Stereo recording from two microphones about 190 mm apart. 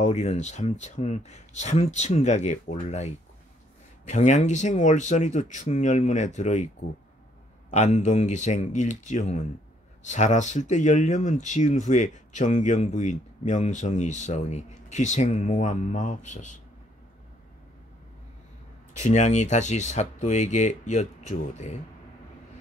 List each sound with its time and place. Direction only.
0.0 s speech: 35° left (ahead or behind)
7.7 s speech: 40° left (ahead or behind)
18.9 s speech: 40° left (ahead or behind)